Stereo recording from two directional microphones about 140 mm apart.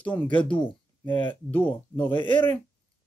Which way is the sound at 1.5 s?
10° left (ahead or behind).